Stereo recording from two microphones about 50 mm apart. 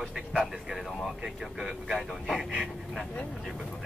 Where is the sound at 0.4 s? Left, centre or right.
Centre.